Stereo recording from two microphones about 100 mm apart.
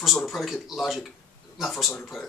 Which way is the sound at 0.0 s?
Centre (ahead or behind).